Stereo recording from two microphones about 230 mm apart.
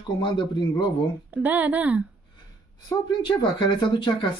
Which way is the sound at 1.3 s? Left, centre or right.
Centre.